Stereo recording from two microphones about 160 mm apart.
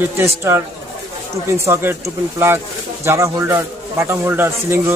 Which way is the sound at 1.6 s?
15° right (ahead or behind).